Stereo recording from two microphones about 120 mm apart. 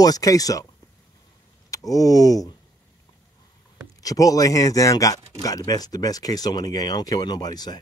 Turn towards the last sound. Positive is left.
turn(degrees=35)  # may be behind; listen again after turning